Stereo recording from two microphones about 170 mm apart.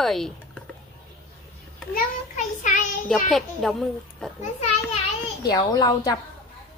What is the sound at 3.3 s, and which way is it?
Speech, centre (ahead or behind).